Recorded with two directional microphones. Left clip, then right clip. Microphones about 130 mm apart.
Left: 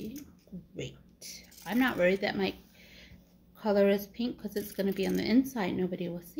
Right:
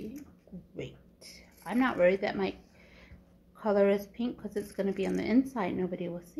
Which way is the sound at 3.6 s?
25° left (ahead or behind).